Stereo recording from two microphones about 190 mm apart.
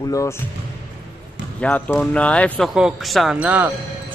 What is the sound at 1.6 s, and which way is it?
Speech, 5° left (ahead or behind).